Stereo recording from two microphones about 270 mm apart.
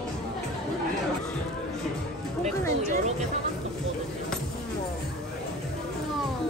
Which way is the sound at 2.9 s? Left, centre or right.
Right.